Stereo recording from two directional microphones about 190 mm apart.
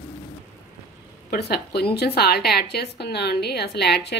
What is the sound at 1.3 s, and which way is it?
A woman's voice, 55° left (ahead or behind).